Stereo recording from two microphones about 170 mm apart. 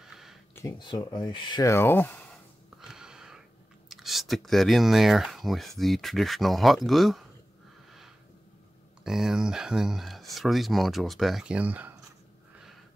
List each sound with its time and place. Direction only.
0.0 s a sound: centre (ahead or behind)
0.6 s speech: 25° left (ahead or behind)
1.7 s speech: 15° left (ahead or behind)
2.8 s wheeze: 5° right (ahead or behind)
3.9 s speech: centre (ahead or behind)
9.0 s speech: 5° right (ahead or behind)